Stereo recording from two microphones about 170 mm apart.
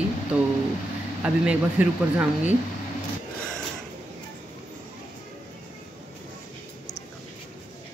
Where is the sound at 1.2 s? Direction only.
10° right (ahead or behind).